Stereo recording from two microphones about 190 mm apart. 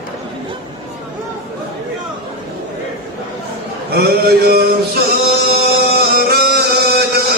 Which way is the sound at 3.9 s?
55° right (ahead or behind).